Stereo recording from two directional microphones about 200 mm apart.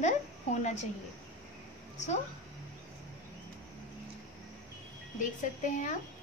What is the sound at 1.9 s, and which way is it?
Speech, 35° left (ahead or behind).